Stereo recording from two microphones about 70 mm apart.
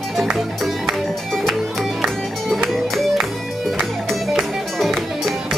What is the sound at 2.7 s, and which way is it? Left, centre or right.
Music, centre.